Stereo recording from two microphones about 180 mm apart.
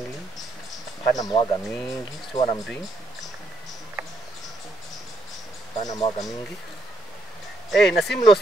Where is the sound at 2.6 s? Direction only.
Centre (ahead or behind).